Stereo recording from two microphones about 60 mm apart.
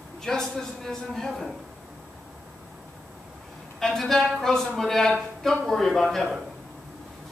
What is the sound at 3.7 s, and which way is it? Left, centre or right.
A woman's voice, centre.